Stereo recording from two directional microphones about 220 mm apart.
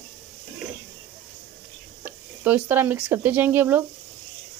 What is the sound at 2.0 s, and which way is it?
Speech, 10° right (ahead or behind).